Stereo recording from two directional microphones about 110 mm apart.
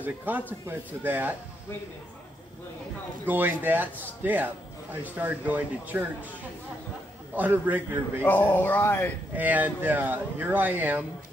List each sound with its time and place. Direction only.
0.0 s speech: 15° right (ahead or behind)
3.3 s speech: 15° right (ahead or behind)
7.3 s speech: 15° right (ahead or behind)
8.2 s speech: 15° left (ahead or behind)
9.3 s speech: 15° right (ahead or behind)